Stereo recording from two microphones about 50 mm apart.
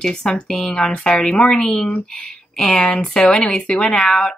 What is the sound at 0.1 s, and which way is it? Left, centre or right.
Speech, centre.